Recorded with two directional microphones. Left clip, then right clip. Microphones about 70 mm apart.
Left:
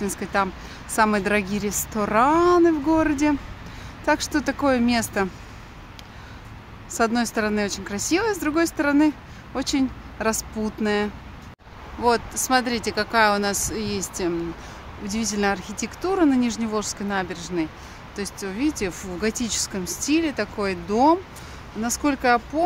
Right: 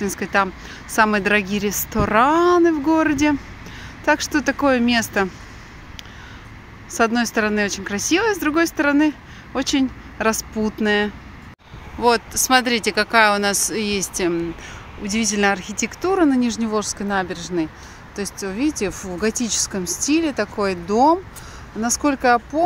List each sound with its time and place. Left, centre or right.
0.0 s speech: right
4.0 s speech: right
6.9 s speech: right
12.0 s speech: right